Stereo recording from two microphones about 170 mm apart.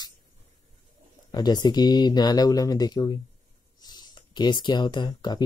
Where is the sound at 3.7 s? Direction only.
25° left (ahead or behind).